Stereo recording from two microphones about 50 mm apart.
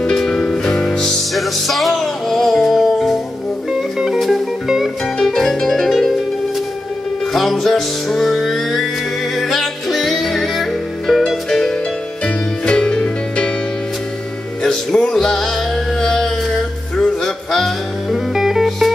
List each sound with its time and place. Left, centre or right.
0.0 s music: centre
5.2 s music: centre
7.3 s music: centre
14.6 s music: centre
18.3 s music: centre